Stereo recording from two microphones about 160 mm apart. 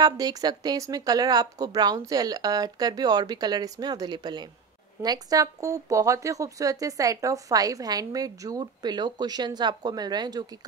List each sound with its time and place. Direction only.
0.0 s speech: 25° right (ahead or behind)